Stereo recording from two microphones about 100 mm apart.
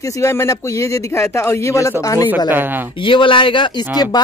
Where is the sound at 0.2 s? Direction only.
30° left (ahead or behind).